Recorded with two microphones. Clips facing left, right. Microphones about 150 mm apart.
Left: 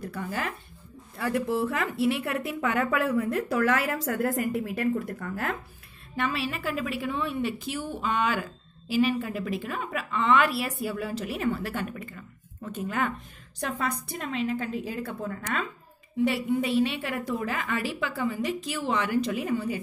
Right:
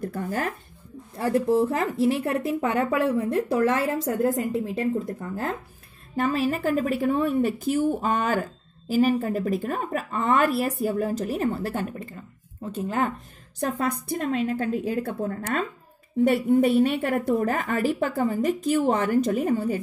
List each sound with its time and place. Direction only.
0.0 s a woman's voice: 50° right (ahead or behind)
1.1 s a woman's voice: 35° right (ahead or behind)
6.1 s a woman's voice: 45° right (ahead or behind)
13.6 s a woman's voice: 50° right (ahead or behind)